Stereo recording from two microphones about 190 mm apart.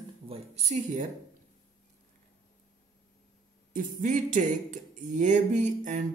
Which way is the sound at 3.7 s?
45° right (ahead or behind).